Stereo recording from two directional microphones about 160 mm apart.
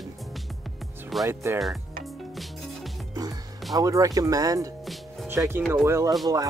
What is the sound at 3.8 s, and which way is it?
Speech, 20° right (ahead or behind).